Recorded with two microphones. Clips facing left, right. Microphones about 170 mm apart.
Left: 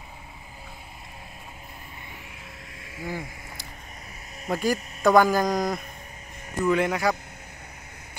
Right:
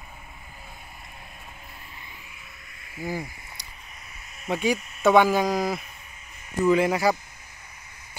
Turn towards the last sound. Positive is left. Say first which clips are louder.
# right 2 dB
turn(degrees=-5)  # may be behind; listen again after turning